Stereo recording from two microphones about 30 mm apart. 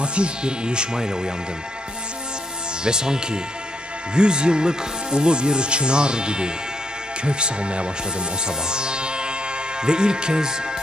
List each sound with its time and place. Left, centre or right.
0.0 s speech: right
2.8 s speech: right
8.5 s music: right
9.8 s speech: right